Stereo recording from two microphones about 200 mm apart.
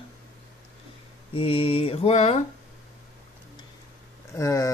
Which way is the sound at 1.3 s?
30° left (ahead or behind).